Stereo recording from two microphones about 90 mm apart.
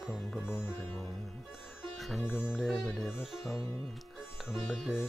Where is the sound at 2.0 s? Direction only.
Centre (ahead or behind).